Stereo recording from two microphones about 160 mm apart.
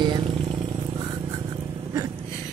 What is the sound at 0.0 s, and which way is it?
Vehicle, 30° right (ahead or behind).